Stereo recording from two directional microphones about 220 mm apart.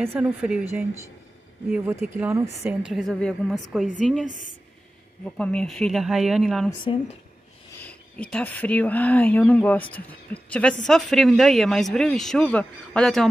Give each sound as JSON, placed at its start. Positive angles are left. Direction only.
{"t": 0.0, "sound": "a woman's voice", "side_deg": -10}
{"t": 6.7, "sound": "speech", "side_deg": 20}
{"t": 7.8, "sound": "speech", "side_deg": 5}